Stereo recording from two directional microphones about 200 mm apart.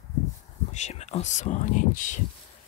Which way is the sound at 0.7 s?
35° left (ahead or behind).